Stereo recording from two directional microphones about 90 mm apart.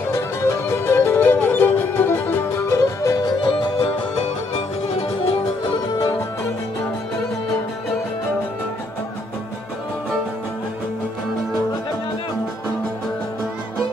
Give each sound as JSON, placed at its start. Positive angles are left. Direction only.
{"t": 0.1, "sound": "music", "side_deg": 30}
{"t": 3.3, "sound": "music", "side_deg": 55}